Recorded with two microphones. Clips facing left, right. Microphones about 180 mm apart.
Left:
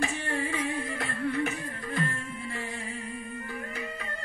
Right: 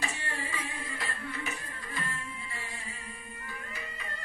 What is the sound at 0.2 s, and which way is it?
Music, 60° left (ahead or behind).